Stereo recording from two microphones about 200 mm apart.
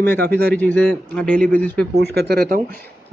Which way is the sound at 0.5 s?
10° left (ahead or behind).